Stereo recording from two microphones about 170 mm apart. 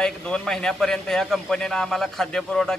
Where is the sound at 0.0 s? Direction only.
5° left (ahead or behind).